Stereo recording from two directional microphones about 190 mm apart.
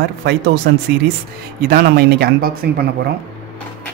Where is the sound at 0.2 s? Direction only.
60° right (ahead or behind).